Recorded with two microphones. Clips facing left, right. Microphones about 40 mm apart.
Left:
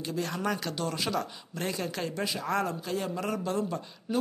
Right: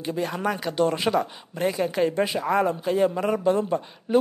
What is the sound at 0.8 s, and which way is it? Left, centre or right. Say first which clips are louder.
Speech: right 8 dB; right.